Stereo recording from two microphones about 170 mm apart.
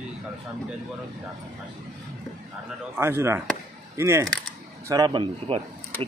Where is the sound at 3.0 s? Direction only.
15° right (ahead or behind).